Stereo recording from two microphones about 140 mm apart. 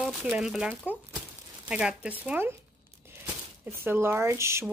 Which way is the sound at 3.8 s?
15° right (ahead or behind).